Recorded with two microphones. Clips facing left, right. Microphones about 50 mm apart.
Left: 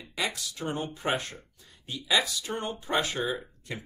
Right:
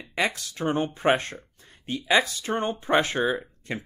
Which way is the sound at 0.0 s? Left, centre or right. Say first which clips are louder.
Right 6 dB; right.